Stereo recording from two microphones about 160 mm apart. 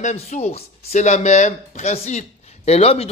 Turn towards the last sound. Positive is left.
turn(degrees=40)  # may be behind; listen again after turning